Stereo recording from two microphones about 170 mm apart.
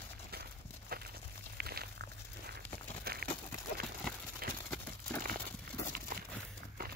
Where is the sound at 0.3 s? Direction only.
65° right (ahead or behind).